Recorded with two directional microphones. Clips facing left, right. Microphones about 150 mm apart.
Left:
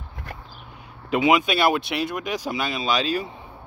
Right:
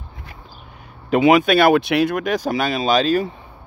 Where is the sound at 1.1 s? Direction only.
50° right (ahead or behind).